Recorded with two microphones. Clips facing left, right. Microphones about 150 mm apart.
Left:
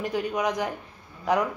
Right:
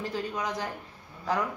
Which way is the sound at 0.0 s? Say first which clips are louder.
Left 6 dB; 15° left (ahead or behind).